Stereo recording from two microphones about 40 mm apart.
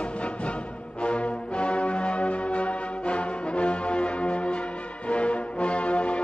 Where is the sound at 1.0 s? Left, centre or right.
Left.